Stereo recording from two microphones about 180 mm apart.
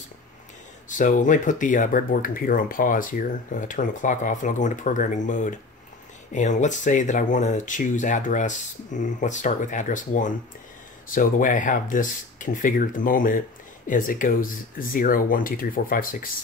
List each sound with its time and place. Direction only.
0.8 s speech: 45° left (ahead or behind)